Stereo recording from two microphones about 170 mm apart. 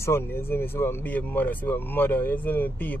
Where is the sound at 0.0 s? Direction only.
15° left (ahead or behind).